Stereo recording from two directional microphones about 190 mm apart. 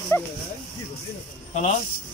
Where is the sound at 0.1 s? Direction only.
15° left (ahead or behind).